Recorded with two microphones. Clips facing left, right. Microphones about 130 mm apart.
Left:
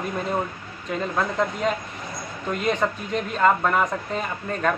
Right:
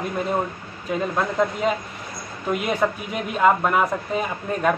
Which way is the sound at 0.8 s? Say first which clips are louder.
Right 2 dB; 5° right (ahead or behind).